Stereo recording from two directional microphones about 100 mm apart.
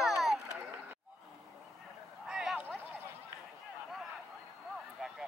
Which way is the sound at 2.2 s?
10° right (ahead or behind).